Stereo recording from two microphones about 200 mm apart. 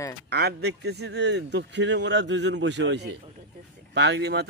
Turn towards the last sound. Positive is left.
turn(degrees=-55)  # may be behind; listen again after turning